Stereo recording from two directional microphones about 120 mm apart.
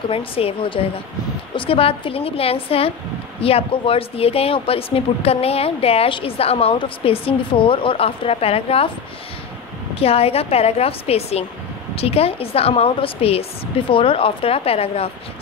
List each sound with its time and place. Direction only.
0.1 s speech: 50° left (ahead or behind)
9.9 s speech: 55° left (ahead or behind)